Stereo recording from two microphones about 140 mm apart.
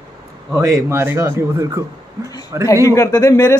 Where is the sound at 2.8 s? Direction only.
20° left (ahead or behind).